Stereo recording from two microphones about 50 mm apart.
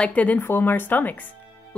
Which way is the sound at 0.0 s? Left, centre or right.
Left.